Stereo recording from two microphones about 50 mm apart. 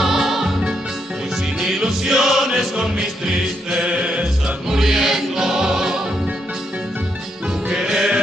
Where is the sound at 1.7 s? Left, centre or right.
Centre.